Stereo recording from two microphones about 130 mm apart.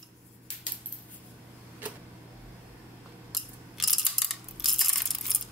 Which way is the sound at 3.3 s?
Centre (ahead or behind).